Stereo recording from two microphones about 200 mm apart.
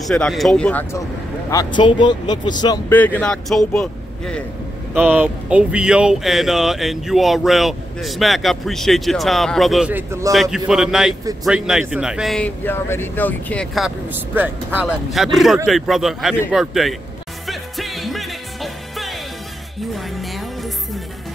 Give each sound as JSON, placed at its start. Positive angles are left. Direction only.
{"t": 0.0, "sound": "speech", "side_deg": 0}
{"t": 1.5, "sound": "speech", "side_deg": 20}
{"t": 2.9, "sound": "speech", "side_deg": 10}
{"t": 4.9, "sound": "speech", "side_deg": -10}
{"t": 10.3, "sound": "speech", "side_deg": 0}
{"t": 17.5, "sound": "music", "side_deg": 0}